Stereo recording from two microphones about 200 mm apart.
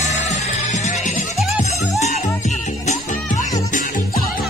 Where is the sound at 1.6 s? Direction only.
35° left (ahead or behind).